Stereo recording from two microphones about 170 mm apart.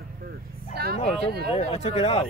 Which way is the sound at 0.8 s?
65° right (ahead or behind).